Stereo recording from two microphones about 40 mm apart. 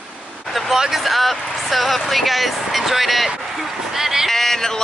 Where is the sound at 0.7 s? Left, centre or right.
Centre.